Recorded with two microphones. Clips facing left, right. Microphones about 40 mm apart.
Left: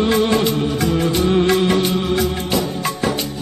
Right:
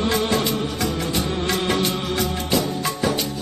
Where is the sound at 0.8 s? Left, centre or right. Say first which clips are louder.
Left 6 dB; left.